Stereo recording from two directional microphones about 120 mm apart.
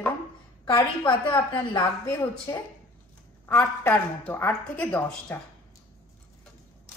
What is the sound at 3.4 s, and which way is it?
A woman's voice, 15° left (ahead or behind).